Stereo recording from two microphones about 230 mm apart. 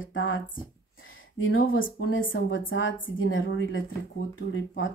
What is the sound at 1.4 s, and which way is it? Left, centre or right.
Speech, left.